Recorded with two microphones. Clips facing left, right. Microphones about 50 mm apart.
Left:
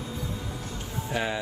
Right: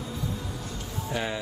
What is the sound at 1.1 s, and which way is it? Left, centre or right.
Speech, centre.